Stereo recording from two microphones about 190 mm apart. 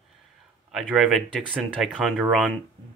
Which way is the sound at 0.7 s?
Centre (ahead or behind).